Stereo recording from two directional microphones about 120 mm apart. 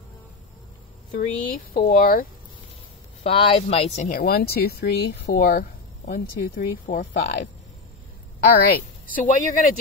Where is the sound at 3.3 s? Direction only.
55° left (ahead or behind).